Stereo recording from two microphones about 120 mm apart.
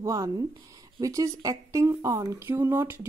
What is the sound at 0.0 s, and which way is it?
Speech, 25° right (ahead or behind).